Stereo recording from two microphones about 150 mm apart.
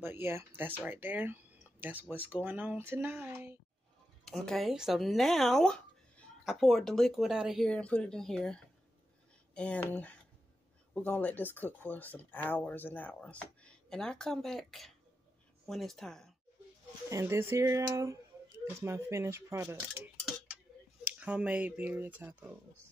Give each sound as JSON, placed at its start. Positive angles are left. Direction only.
{"t": 0.0, "sound": "speech", "side_deg": -15}
{"t": 4.2, "sound": "speech", "side_deg": 5}
{"t": 9.6, "sound": "speech", "side_deg": 10}
{"t": 17.1, "sound": "speech", "side_deg": -15}
{"t": 21.1, "sound": "speech", "side_deg": -10}